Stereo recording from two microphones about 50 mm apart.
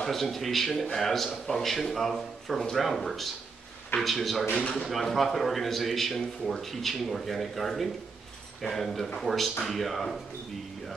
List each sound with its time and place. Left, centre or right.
0.0 s a man's voice: centre
4.6 s speech: left
4.8 s a man's voice: centre